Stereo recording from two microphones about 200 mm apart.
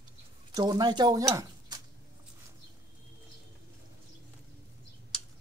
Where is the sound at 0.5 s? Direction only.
20° right (ahead or behind).